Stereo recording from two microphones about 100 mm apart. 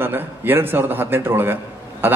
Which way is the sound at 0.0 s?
20° right (ahead or behind).